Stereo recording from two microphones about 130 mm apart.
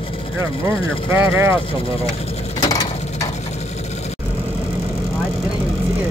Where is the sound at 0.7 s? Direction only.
15° right (ahead or behind).